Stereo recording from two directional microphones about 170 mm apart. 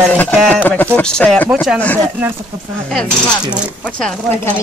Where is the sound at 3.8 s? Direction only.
5° left (ahead or behind).